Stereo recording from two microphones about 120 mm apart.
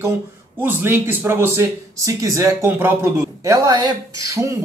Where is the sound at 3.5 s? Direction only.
35° right (ahead or behind).